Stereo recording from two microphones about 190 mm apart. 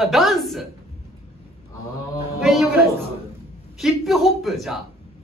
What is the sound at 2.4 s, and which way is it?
A man's voice, centre (ahead or behind).